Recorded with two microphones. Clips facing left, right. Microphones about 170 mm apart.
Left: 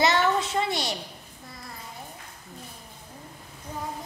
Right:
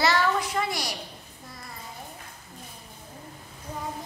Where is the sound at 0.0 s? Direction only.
20° left (ahead or behind).